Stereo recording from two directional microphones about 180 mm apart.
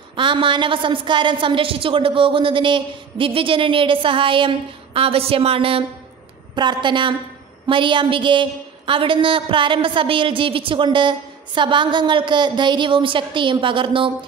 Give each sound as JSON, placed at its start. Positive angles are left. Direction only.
{"t": 0.1, "sound": "a woman's voice", "side_deg": -30}